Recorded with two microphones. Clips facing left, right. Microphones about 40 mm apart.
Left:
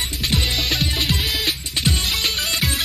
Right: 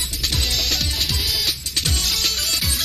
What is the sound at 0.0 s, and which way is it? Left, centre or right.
Music, left.